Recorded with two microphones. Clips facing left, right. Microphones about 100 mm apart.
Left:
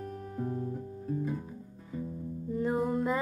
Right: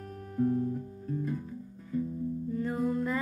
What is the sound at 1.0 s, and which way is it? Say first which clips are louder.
Music: left 1 dB; 10° left (ahead or behind).